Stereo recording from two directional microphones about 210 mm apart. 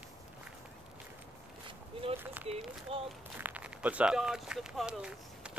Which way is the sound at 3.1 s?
10° right (ahead or behind).